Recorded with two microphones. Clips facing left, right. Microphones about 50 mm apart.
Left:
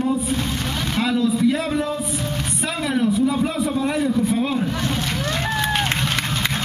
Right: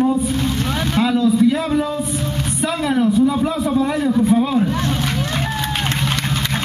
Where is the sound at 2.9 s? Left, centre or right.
Centre.